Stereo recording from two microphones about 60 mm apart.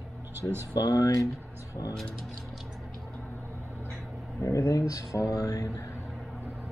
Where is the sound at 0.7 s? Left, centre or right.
Left.